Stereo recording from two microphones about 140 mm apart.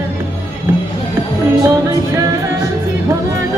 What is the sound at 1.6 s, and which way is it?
Music, 25° right (ahead or behind).